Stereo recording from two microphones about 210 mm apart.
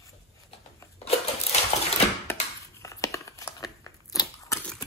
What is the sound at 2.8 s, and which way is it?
Crumpling, 15° left (ahead or behind).